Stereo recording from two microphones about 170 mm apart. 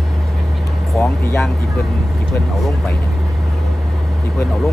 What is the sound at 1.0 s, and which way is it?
Vehicle, 15° left (ahead or behind).